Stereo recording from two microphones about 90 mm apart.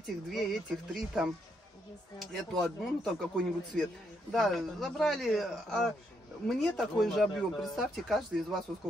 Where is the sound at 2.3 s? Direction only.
Centre (ahead or behind).